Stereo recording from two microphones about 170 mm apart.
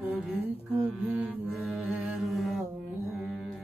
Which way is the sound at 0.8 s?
5° right (ahead or behind).